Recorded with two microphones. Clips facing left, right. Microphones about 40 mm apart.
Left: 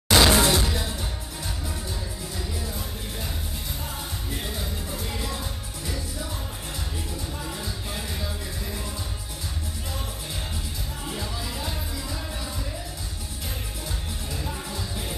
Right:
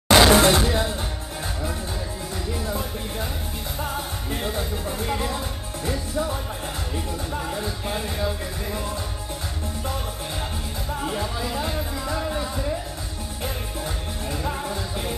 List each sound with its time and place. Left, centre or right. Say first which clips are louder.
0.1 s music: right 4 dB; right
2.5 s music: right 6 dB; right
4.3 s music: right 6 dB; right
7.4 s music: right 5 dB; right
11.1 s music: right 4 dB; right
14.3 s music: right 6 dB; right